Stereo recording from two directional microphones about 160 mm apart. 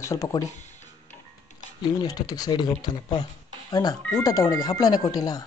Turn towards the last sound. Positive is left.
turn(degrees=25)  # may be behind; listen again after turning